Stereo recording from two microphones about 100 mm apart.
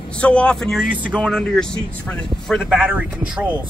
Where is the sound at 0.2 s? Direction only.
10° left (ahead or behind).